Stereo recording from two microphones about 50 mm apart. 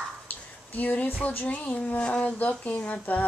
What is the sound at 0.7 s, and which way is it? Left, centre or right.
Speech, left.